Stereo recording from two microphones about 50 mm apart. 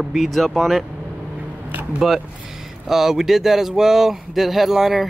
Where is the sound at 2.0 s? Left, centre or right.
Centre.